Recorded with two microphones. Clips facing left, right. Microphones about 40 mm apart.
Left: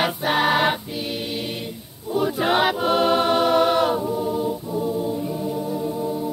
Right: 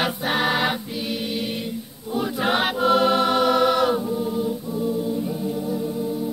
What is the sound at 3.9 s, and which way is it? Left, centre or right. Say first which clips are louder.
Choir: left 1 dB; centre.